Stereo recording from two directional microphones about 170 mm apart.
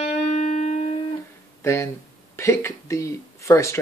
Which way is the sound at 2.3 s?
15° left (ahead or behind).